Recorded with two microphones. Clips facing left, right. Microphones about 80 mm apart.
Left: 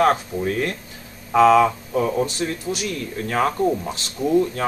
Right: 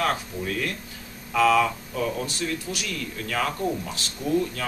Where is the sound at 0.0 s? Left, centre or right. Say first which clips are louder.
Left 8 dB; left.